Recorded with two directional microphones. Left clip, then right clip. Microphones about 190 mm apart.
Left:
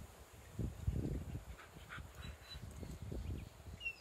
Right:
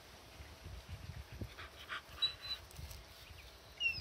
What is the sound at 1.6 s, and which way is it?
Dog, 50° right (ahead or behind).